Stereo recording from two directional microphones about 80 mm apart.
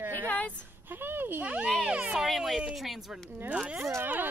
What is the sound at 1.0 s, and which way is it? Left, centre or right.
Speech, right.